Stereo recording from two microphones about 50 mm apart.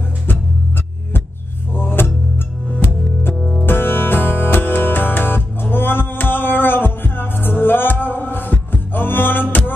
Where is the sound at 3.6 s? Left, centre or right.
Left.